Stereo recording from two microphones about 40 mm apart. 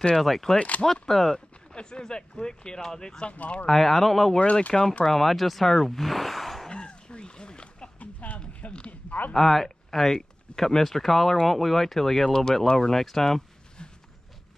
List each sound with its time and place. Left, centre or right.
0.1 s speech: centre
0.6 s speech: left
1.0 s speech: centre
1.7 s speech: centre
3.3 s speech: left
3.6 s speech: centre
4.4 s speech: left
5.0 s speech: centre
6.7 s a sound: left
8.0 s a sound: left
8.4 s a sound: left
9.3 s speech: centre